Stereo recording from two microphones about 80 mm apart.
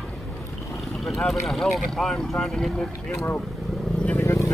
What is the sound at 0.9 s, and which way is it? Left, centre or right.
Speech, centre.